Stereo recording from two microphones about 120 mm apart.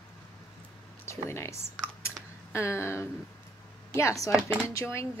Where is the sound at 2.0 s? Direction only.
25° left (ahead or behind).